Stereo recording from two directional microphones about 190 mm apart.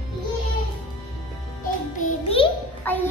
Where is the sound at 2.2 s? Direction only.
30° left (ahead or behind).